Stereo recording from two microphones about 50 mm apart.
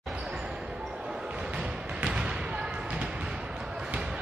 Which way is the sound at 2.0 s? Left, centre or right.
Right.